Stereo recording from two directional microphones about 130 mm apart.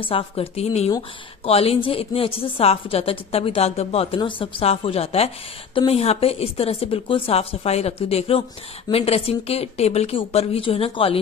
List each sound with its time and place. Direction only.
0.0 s speech: 45° left (ahead or behind)
4.2 s speech: 40° left (ahead or behind)